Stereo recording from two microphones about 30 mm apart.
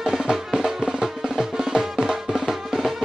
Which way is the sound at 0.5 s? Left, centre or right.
Right.